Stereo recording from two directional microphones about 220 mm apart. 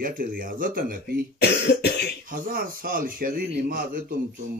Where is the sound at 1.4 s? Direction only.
50° left (ahead or behind).